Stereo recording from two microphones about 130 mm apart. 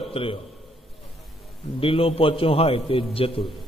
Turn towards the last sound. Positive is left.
turn(degrees=45)  # may be behind; listen again after turning